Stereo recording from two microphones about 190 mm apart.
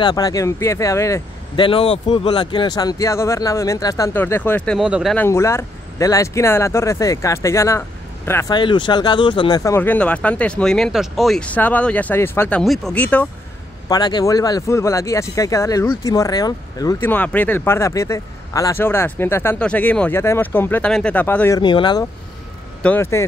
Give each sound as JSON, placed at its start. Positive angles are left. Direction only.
{"t": 0.0, "sound": "speech", "side_deg": 20}
{"t": 1.6, "sound": "speech", "side_deg": 30}
{"t": 5.1, "sound": "speech", "side_deg": 10}
{"t": 13.8, "sound": "speech", "side_deg": 20}
{"t": 21.5, "sound": "speech", "side_deg": 25}
{"t": 22.8, "sound": "speech", "side_deg": 10}